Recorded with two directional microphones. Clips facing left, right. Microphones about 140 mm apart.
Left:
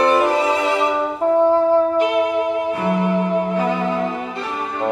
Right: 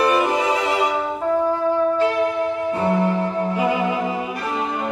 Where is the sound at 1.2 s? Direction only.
30° left (ahead or behind).